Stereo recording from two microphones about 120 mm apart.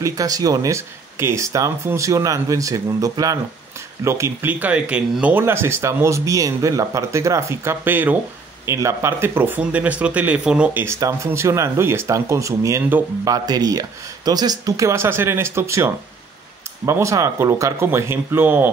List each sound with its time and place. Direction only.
0.0 s speech: 30° right (ahead or behind); by 10.8 s 10° right (ahead or behind)
10.8 s speech: 20° right (ahead or behind)